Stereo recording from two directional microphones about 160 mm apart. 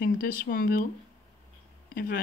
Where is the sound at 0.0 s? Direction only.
65° left (ahead or behind).